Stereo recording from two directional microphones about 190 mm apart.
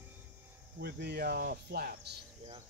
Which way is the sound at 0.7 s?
60° right (ahead or behind).